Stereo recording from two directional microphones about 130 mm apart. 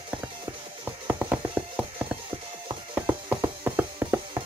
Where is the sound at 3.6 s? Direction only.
15° right (ahead or behind).